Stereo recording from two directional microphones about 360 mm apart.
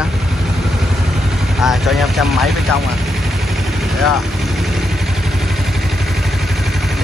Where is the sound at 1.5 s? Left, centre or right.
Centre.